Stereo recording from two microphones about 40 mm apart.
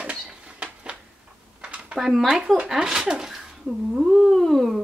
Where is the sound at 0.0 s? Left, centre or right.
Right.